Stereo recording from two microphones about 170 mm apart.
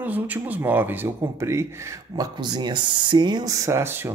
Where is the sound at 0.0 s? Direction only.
10° right (ahead or behind).